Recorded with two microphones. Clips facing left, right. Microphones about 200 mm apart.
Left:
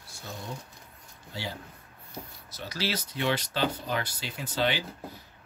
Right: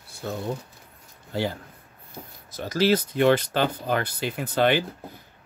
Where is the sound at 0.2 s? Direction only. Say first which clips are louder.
Right 10 dB; 60° right (ahead or behind).